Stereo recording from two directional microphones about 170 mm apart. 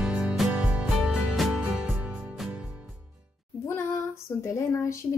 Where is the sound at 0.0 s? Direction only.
5° right (ahead or behind).